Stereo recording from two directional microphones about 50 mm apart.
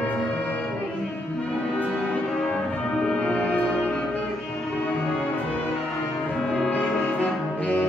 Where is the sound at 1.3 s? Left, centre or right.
Left.